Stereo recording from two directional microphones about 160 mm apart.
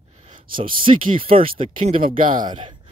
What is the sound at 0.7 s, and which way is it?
Speech, 35° right (ahead or behind).